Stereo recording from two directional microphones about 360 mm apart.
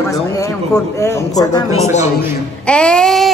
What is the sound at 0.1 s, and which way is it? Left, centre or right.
A man's voice, centre.